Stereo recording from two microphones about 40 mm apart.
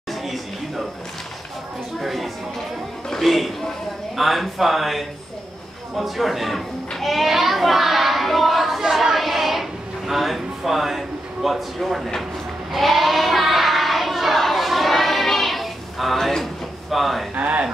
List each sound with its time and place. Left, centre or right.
2.0 s speech: centre
7.0 s a sound: centre
12.7 s child singing: centre
16.9 s speech: centre
17.4 s speech: right